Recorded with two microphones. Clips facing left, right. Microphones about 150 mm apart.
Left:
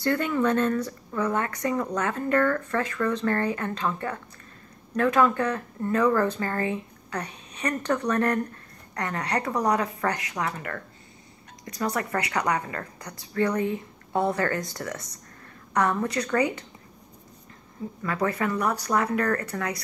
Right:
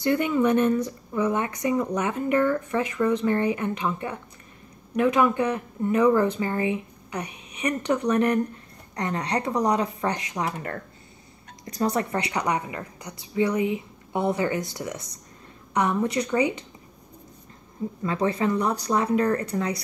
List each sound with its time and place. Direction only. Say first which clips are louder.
0.0 s speech: right 2 dB; 15° right (ahead or behind)
11.6 s speech: right 3 dB; 30° right (ahead or behind)
18.0 s speech: right 2 dB; 25° right (ahead or behind)